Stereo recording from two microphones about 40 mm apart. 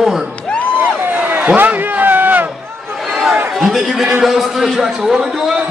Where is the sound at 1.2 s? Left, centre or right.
Right.